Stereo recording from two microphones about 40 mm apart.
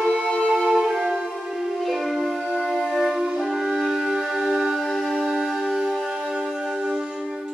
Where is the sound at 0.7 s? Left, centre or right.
Centre.